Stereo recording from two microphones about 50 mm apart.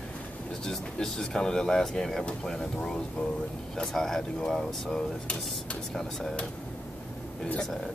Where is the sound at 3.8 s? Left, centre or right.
Centre.